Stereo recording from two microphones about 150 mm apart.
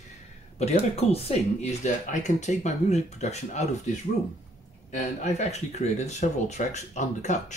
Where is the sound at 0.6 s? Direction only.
45° left (ahead or behind).